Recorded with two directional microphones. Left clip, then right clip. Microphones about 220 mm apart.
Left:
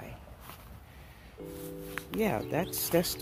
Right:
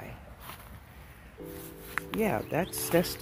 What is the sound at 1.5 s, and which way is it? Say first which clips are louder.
Music: right 3 dB; 20° right (ahead or behind).